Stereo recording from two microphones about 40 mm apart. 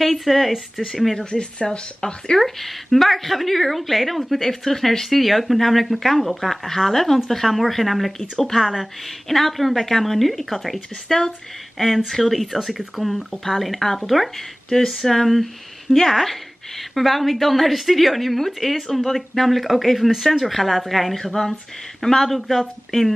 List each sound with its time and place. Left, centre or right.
0.0 s a woman's voice: centre
1.3 s speech: left
2.4 s a woman's voice: centre
8.2 s speech: centre
8.5 s a woman's voice: centre